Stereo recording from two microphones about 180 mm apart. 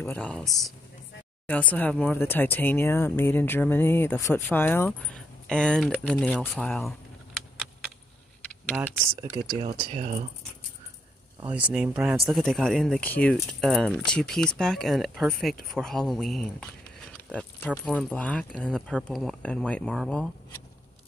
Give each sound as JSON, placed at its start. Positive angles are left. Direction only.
{"t": 0.0, "sound": "speech", "side_deg": 10}
{"t": 8.7, "sound": "speech", "side_deg": -15}
{"t": 9.6, "sound": "speech", "side_deg": -35}
{"t": 11.5, "sound": "speech", "side_deg": -5}